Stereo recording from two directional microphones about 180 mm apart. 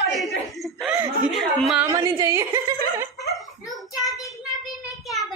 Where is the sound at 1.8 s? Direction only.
15° right (ahead or behind).